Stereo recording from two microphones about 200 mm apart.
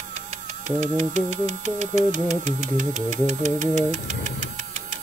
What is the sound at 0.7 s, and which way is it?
Speech, 35° right (ahead or behind).